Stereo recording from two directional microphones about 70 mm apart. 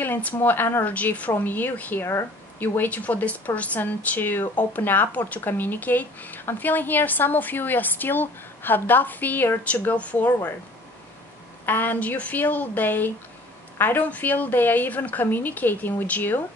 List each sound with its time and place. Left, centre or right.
0.0 s speech: left
0.9 s speech: left
11.6 s speech: left